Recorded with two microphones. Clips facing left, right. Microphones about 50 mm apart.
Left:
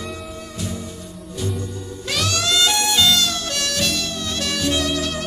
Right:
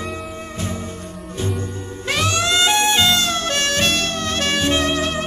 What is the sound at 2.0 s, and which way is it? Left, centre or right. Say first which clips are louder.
Music: right 3 dB; right.